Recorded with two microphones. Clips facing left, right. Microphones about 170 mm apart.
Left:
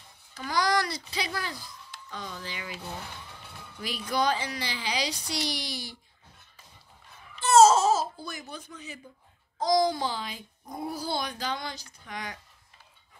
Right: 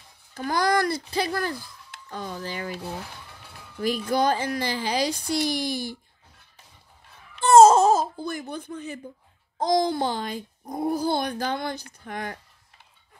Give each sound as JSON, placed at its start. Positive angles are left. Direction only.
{"t": 0.3, "sound": "speech", "side_deg": -50}
{"t": 3.8, "sound": "speech", "side_deg": -50}
{"t": 7.3, "sound": "a sound", "side_deg": -55}
{"t": 9.6, "sound": "speech", "side_deg": -55}